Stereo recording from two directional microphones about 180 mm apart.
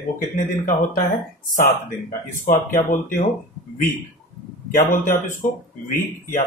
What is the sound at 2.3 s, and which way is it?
Speech, 50° left (ahead or behind).